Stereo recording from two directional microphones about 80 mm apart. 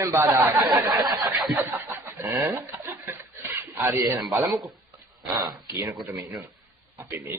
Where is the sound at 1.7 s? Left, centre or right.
Right.